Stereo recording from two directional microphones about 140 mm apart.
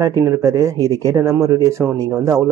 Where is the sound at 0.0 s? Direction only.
25° right (ahead or behind).